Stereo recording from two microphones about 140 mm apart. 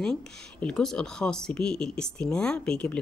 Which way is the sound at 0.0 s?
5° left (ahead or behind).